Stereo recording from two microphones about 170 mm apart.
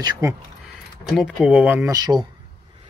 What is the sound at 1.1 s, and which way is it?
Speech, centre (ahead or behind).